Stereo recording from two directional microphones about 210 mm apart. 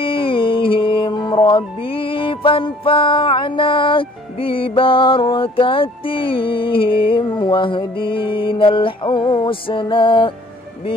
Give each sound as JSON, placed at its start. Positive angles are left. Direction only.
{"t": 0.0, "sound": "music", "side_deg": 25}